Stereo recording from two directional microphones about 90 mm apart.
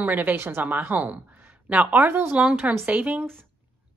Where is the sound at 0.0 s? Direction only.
20° right (ahead or behind).